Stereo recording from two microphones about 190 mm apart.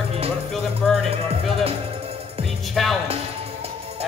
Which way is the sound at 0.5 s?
Centre (ahead or behind).